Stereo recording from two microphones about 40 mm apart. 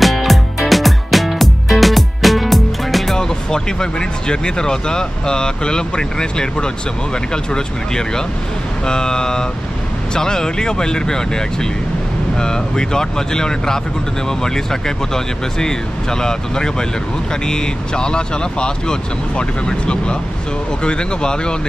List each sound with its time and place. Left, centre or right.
0.0 s music: centre
3.2 s speech: centre